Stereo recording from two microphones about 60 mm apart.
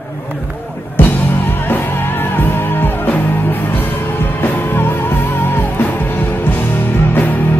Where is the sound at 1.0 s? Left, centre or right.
Left.